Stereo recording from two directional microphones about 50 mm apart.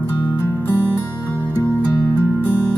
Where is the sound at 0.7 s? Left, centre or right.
Right.